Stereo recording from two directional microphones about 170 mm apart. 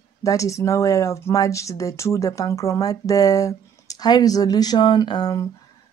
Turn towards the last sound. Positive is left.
turn(degrees=25)  # may be behind; listen again after turning